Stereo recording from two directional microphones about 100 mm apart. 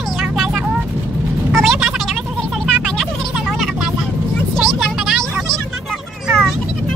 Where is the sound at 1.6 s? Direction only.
Centre (ahead or behind).